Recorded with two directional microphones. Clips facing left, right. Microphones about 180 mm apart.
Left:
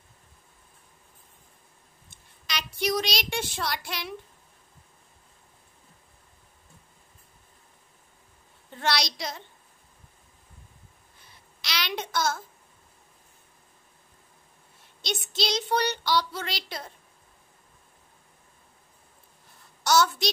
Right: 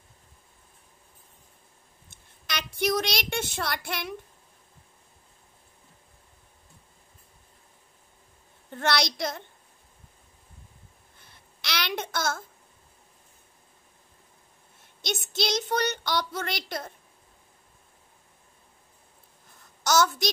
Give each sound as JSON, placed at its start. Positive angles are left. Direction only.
{"t": 2.4, "sound": "speech", "side_deg": -55}
{"t": 8.6, "sound": "a child's voice", "side_deg": -50}
{"t": 11.1, "sound": "a sound", "side_deg": -55}
{"t": 15.0, "sound": "speech", "side_deg": -50}
{"t": 19.8, "sound": "a child's voice", "side_deg": -45}